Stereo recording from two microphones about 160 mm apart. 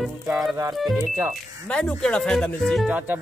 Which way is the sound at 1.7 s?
5° left (ahead or behind).